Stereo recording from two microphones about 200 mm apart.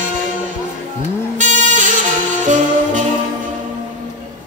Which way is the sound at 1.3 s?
40° right (ahead or behind).